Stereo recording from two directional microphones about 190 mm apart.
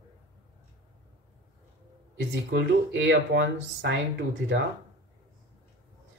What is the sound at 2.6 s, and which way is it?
Speech, 70° right (ahead or behind).